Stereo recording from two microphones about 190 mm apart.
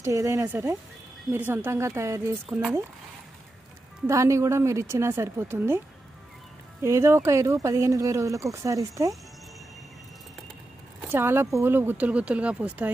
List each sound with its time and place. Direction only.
0.0 s speech: 15° right (ahead or behind)
2.4 s speech: centre (ahead or behind)
4.1 s speech: 15° right (ahead or behind)
6.8 s speech: 15° right (ahead or behind)
11.1 s speech: 10° right (ahead or behind)